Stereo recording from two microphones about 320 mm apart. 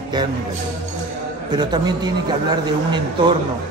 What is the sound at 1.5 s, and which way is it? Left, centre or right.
A man's voice, centre.